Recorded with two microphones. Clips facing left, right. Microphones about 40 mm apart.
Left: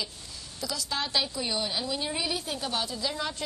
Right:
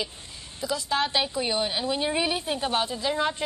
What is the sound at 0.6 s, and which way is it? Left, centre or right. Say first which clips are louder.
Speech: right 6 dB; right.